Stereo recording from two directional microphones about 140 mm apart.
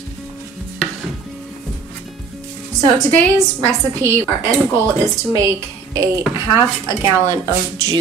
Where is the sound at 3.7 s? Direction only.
20° right (ahead or behind).